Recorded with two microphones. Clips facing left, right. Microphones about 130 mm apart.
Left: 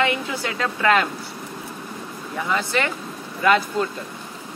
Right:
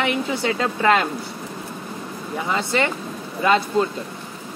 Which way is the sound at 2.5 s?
25° right (ahead or behind).